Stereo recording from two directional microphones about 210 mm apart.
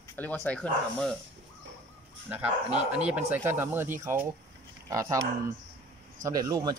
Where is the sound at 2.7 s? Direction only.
5° right (ahead or behind).